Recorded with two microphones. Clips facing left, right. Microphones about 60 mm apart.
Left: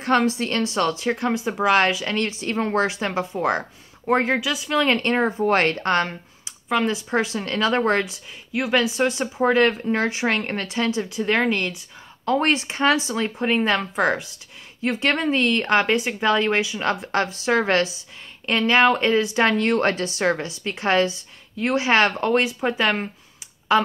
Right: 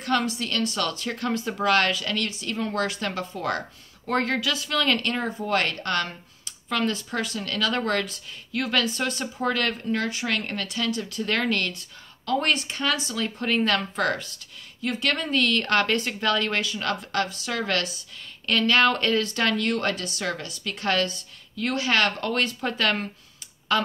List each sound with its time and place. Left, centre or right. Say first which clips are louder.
0.0 s speech: left 5 dB; left; by 4.6 s centre
4.6 s speech: left 5 dB; left
5.1 s speech: left 6 dB; left
6.7 s speech: left 4 dB; centre
7.1 s speech: left 6 dB; left
8.0 s speech: left 4 dB; centre; by 10.9 s left
10.9 s speech: left 5 dB; centre
14.8 s speech: left 5 dB; left